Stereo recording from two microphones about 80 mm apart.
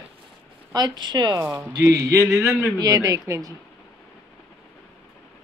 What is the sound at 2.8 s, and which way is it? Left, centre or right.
Speech, right.